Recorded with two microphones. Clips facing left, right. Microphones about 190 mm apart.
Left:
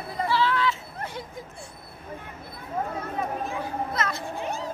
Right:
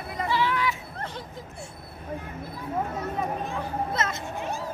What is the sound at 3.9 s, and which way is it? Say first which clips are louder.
Speech: even; 25° right (ahead or behind).